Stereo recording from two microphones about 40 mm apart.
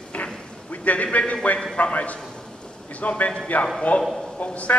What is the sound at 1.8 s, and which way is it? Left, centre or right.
A man's voice, left.